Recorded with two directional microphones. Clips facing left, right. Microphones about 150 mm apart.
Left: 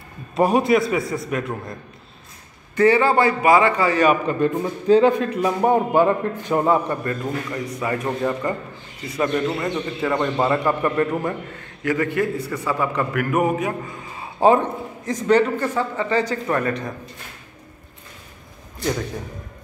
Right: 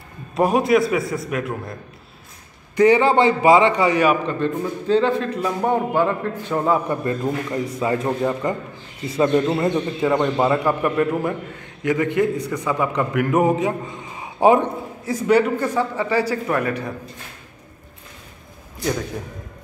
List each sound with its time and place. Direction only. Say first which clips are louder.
0.3 s a man's voice: even; centre (ahead or behind)
2.7 s a man's voice: right 1 dB; 15° right (ahead or behind)
4.3 s a man's voice: left 2 dB; 10° left (ahead or behind)
6.9 s a man's voice: right 2 dB; 20° right (ahead or behind)
9.0 s a man's voice: right 4 dB; 25° right (ahead or behind)
10.0 s a man's voice: right 2 dB; 10° right (ahead or behind)